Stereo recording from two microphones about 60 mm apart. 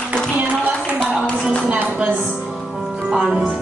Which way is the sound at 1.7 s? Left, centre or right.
Right.